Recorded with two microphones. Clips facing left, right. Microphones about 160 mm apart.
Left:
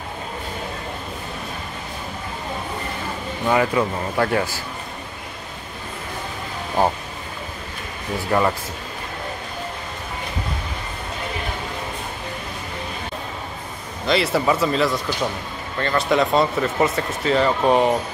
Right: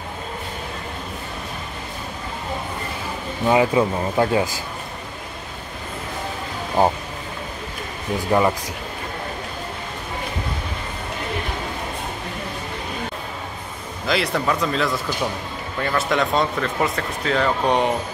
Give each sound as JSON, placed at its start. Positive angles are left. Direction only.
{"t": 3.4, "sound": "speech", "side_deg": -20}
{"t": 8.3, "sound": "speech", "side_deg": -10}
{"t": 14.0, "sound": "speech", "side_deg": 0}